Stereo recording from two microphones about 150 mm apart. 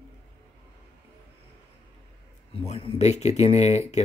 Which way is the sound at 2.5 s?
40° left (ahead or behind).